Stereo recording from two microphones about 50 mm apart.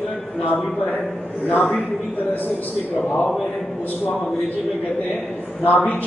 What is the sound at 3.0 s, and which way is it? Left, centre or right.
Speech, left.